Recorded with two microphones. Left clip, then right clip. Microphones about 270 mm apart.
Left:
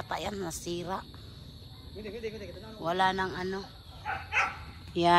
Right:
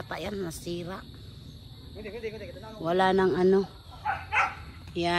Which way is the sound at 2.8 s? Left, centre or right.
Centre.